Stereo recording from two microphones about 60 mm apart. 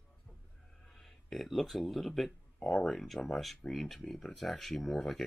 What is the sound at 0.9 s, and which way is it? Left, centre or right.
Speech, centre.